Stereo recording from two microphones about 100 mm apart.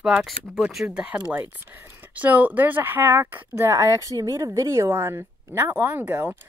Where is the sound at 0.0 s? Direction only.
10° right (ahead or behind).